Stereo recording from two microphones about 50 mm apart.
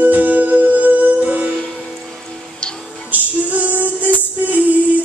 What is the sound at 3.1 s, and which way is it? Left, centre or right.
Female singing, right.